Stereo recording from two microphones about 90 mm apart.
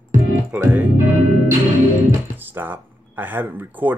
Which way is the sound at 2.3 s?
20° right (ahead or behind).